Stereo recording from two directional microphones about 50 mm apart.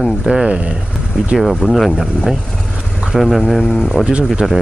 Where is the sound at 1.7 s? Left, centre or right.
Centre.